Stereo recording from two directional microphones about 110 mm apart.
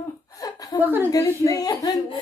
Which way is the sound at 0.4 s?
35° left (ahead or behind).